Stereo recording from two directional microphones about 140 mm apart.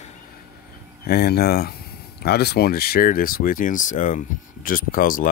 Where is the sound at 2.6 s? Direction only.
90° left.